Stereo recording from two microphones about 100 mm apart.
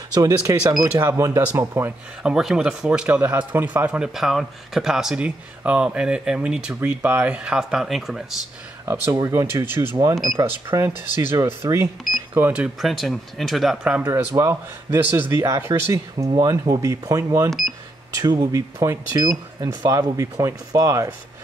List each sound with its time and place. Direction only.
0.1 s speech: 35° right (ahead or behind)
2.2 s speech: 5° right (ahead or behind)
8.8 s speech: 30° right (ahead or behind)
12.5 s speech: 5° right (ahead or behind)
14.0 s speech: 30° right (ahead or behind)
17.5 s speech: centre (ahead or behind)
18.1 s speech: 40° right (ahead or behind)